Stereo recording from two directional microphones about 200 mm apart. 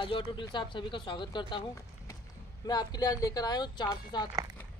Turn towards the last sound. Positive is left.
turn(degrees=20)  # may be behind; listen again after turning